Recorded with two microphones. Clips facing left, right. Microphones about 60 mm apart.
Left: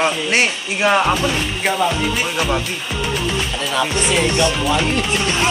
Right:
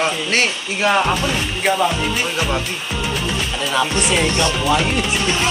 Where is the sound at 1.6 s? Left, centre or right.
Centre.